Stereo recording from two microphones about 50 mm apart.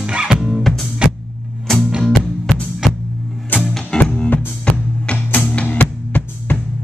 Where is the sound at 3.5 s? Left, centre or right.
Left.